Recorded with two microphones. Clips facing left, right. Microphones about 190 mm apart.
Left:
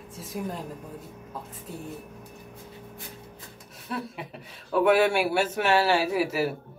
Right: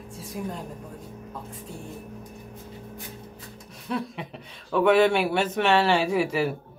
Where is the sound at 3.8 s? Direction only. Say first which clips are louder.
Right 4 dB; 5° left (ahead or behind).